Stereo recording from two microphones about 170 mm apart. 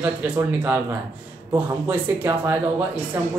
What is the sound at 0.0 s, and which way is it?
Speech, 10° right (ahead or behind).